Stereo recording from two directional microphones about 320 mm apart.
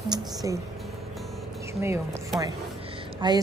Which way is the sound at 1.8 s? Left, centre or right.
Centre.